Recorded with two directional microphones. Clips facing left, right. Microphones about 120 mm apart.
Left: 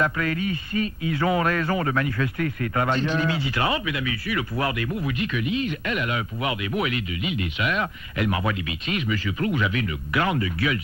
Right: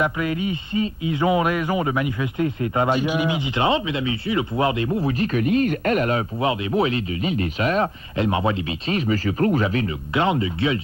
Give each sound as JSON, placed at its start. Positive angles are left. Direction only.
{"t": 0.0, "sound": "speech", "side_deg": -20}
{"t": 3.0, "sound": "speech", "side_deg": -10}
{"t": 10.1, "sound": "speech", "side_deg": -25}